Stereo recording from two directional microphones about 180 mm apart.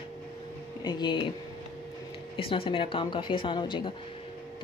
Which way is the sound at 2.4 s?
30° left (ahead or behind).